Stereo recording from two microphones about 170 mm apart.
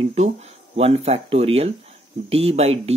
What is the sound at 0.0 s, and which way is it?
Speech, 40° right (ahead or behind).